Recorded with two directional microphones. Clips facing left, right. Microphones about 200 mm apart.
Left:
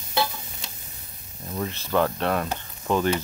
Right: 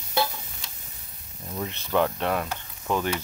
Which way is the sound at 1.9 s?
10° right (ahead or behind).